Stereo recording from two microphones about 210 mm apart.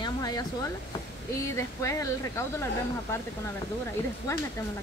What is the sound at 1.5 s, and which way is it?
Speech, 15° left (ahead or behind).